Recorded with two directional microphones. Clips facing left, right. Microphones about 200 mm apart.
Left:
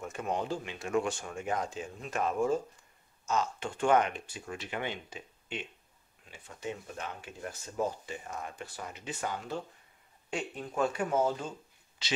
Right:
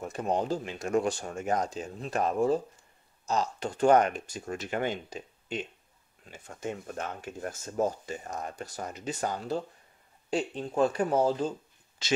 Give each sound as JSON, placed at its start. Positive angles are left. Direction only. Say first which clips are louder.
{"t": 0.0, "sound": "speech", "louder": "right 4 dB", "side_deg": -35}
{"t": 12.0, "sound": "speech", "louder": "right 6 dB", "side_deg": -45}